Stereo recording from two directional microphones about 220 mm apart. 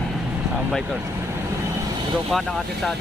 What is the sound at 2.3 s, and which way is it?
Speech, centre (ahead or behind).